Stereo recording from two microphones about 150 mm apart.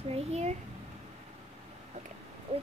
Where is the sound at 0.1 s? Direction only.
45° right (ahead or behind).